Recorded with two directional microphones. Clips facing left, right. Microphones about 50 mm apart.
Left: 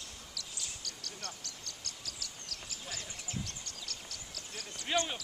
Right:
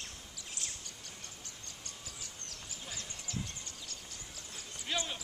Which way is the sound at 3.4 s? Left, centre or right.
Left.